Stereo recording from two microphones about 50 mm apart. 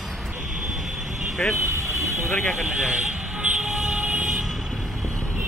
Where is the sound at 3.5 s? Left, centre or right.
Centre.